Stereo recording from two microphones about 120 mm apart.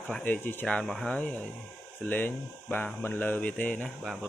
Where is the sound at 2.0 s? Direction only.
15° left (ahead or behind).